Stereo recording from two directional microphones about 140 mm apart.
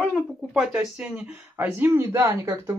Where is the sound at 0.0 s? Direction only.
Centre (ahead or behind).